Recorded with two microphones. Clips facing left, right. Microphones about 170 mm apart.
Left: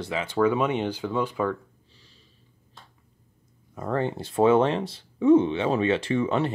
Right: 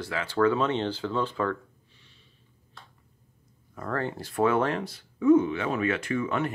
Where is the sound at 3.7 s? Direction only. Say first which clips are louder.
Left 4 dB; 20° left (ahead or behind).